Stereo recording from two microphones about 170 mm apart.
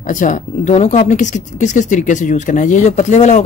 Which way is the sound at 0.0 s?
50° left (ahead or behind).